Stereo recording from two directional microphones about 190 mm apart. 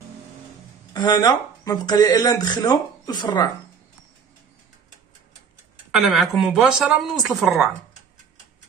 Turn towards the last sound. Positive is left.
turn(degrees=0)  # may be behind; listen again after turning